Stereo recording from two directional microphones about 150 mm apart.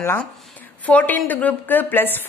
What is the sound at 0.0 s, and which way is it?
A woman's voice, 15° left (ahead or behind).